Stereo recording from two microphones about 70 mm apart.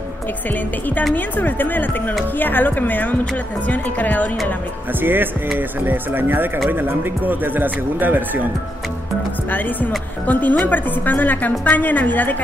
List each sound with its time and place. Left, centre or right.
1.1 s speech: left
5.0 s speech: right
9.5 s speech: left